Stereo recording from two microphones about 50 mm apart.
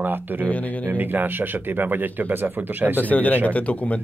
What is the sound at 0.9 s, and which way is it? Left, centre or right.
Speech, right.